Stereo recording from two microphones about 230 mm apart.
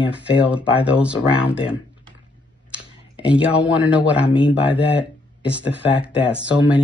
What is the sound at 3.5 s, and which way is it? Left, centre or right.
Speech, centre.